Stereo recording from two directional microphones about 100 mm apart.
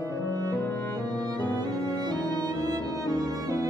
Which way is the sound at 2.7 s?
35° right (ahead or behind).